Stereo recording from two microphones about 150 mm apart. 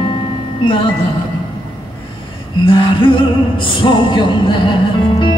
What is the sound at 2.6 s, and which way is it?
Music, 35° left (ahead or behind).